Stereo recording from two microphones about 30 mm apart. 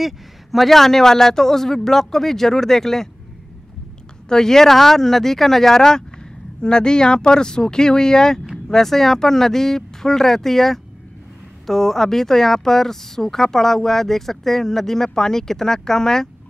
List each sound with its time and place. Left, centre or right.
0.0 s a sound: centre
0.7 s speech: centre
4.3 s speech: centre